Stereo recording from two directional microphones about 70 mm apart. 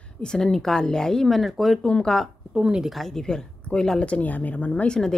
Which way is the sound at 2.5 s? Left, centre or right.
Centre.